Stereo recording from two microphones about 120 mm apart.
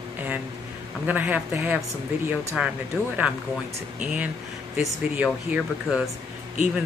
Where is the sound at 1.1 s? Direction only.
15° right (ahead or behind).